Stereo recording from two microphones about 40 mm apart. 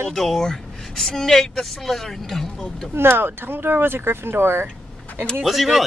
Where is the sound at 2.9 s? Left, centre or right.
Right.